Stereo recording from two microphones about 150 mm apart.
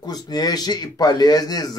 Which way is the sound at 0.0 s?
25° left (ahead or behind).